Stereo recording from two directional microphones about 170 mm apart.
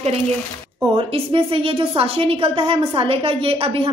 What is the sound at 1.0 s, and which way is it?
A woman's voice, 35° right (ahead or behind).